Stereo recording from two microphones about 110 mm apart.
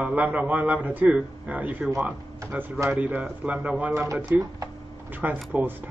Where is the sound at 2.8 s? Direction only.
15° right (ahead or behind).